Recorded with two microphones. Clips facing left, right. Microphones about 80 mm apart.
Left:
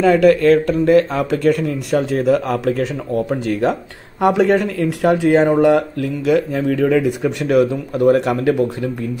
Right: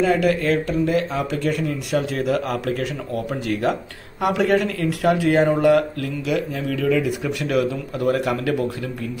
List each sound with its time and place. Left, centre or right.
0.0 s speech: left
6.2 s speech: left